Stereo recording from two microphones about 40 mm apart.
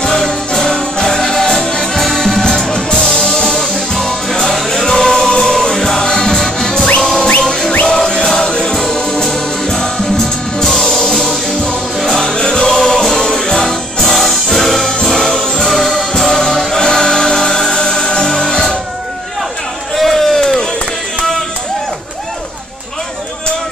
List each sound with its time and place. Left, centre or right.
0.0 s music: centre
15.6 s music: centre
15.9 s music: centre
20.0 s crowd: centre